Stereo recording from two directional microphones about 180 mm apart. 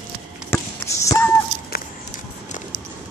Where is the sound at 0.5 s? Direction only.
15° left (ahead or behind).